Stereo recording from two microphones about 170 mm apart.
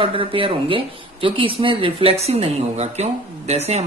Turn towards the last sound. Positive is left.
turn(degrees=-40)  # may be behind; listen again after turning